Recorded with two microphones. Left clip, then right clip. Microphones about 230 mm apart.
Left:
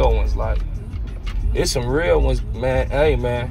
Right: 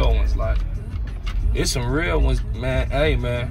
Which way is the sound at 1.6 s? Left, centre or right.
Centre.